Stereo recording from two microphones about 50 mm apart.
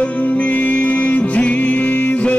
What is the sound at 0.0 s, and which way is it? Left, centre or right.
Music, left.